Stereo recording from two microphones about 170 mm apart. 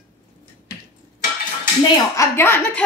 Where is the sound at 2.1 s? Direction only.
15° left (ahead or behind).